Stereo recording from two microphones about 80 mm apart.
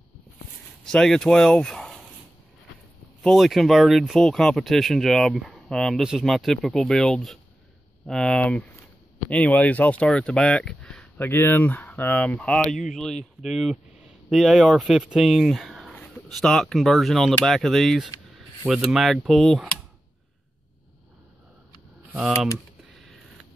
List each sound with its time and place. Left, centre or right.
0.8 s speech: centre
3.2 s speech: centre
11.1 s speech: left
12.5 s speech: centre